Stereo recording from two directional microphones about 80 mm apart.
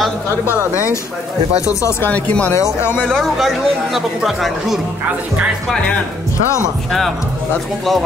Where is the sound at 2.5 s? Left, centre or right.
Left.